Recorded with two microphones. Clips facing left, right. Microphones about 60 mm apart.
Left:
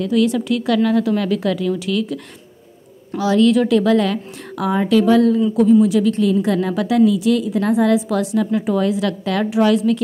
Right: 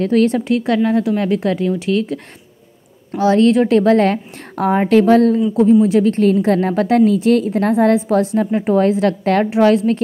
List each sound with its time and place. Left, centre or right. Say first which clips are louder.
0.0 s a woman's voice: right 3 dB; right
0.4 s a woman's voice: right 1 dB; right
3.2 s a woman's voice: right 2 dB; right